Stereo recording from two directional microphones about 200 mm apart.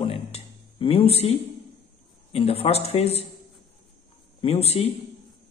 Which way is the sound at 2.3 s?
30° left (ahead or behind).